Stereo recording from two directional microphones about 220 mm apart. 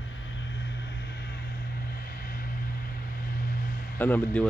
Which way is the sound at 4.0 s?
10° left (ahead or behind).